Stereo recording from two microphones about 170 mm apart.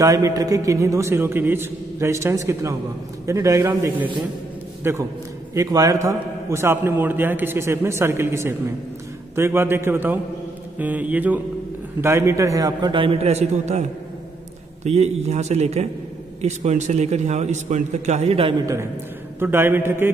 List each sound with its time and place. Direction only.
0.0 s a man's voice: 20° right (ahead or behind); by 13.8 s 40° right (ahead or behind)
14.9 s speech: 40° right (ahead or behind)
19.4 s a man's voice: 10° right (ahead or behind)